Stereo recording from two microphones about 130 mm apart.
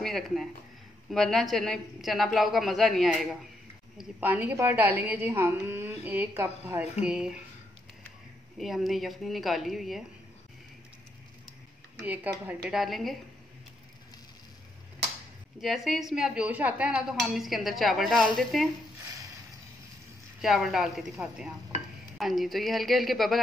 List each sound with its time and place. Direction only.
0.0 s speech: centre (ahead or behind)
4.2 s a woman's voice: 15° right (ahead or behind)
6.8 s a woman's voice: 5° right (ahead or behind)
8.5 s speech: centre (ahead or behind)
12.0 s speech: 10° right (ahead or behind)
15.6 s speech: centre (ahead or behind)
20.4 s speech: centre (ahead or behind)